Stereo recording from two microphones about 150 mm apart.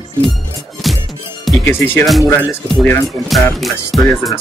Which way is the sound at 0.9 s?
Centre (ahead or behind).